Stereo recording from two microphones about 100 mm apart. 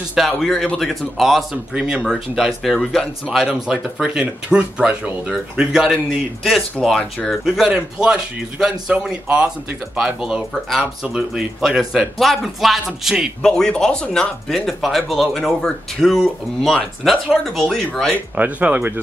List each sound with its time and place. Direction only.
0.1 s speech: centre (ahead or behind)
18.3 s speech: 15° right (ahead or behind)